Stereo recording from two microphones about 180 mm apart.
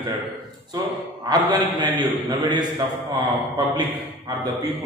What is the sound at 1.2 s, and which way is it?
A man's voice, 20° right (ahead or behind).